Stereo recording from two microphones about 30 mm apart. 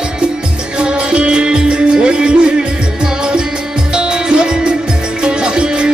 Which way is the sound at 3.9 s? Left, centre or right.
Right.